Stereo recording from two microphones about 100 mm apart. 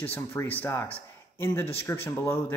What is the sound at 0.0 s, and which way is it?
A man's voice, 20° left (ahead or behind).